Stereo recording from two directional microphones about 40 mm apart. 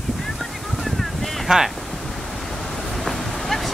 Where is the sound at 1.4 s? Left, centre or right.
Centre.